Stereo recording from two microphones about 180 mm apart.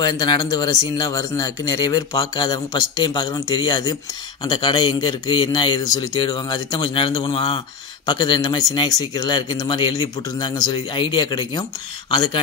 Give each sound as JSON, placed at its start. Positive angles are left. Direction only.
{"t": 0.0, "sound": "speech", "side_deg": 25}